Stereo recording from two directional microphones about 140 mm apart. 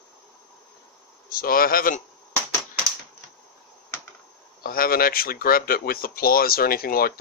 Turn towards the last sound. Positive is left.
turn(degrees=90)